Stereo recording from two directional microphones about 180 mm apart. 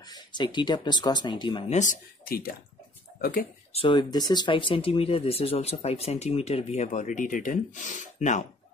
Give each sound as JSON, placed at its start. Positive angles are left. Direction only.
{"t": 0.0, "sound": "speech", "side_deg": 25}
{"t": 1.7, "sound": "speech", "side_deg": 45}
{"t": 3.7, "sound": "speech", "side_deg": 25}